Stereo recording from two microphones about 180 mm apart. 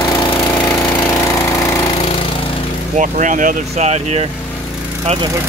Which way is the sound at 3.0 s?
45° right (ahead or behind).